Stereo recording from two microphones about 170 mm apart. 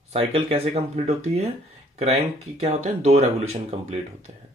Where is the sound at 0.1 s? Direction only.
35° right (ahead or behind).